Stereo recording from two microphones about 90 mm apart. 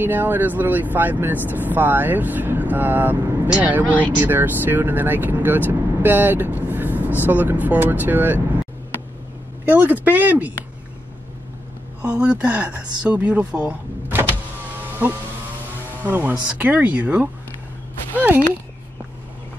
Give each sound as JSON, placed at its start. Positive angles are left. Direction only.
{"t": 0.0, "sound": "speech", "side_deg": -20}
{"t": 9.7, "sound": "speech", "side_deg": -20}
{"t": 12.0, "sound": "speech", "side_deg": -15}
{"t": 16.0, "sound": "speech", "side_deg": -20}
{"t": 18.1, "sound": "a sound", "side_deg": -20}